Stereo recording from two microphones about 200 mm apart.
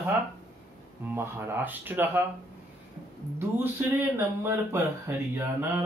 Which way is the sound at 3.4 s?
10° right (ahead or behind).